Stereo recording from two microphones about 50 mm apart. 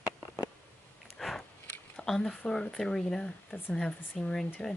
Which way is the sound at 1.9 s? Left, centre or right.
Centre.